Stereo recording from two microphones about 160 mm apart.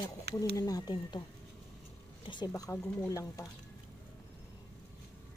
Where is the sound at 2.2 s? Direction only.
30° left (ahead or behind).